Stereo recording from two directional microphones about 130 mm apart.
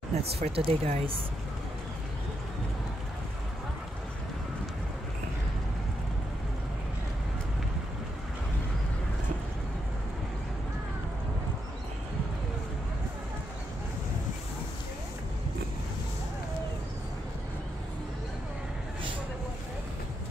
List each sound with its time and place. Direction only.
0.1 s speech: 50° right (ahead or behind)